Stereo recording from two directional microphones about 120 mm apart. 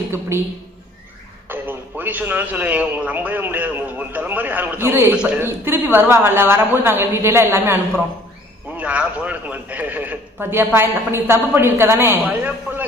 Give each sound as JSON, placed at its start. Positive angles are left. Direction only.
{"t": 0.3, "sound": "a woman's voice", "side_deg": -20}
{"t": 1.5, "sound": "a man's voice", "side_deg": -15}